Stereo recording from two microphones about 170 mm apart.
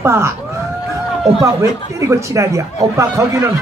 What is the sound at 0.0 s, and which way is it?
Speech, 15° right (ahead or behind).